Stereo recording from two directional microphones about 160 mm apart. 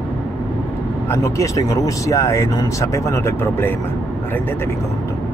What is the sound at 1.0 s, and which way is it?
Speech, 20° left (ahead or behind).